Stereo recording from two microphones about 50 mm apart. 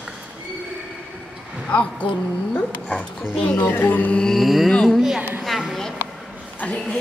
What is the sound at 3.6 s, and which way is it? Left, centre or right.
Music, left.